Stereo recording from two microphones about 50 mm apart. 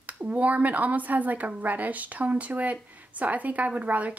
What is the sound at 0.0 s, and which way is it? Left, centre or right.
Speech, right.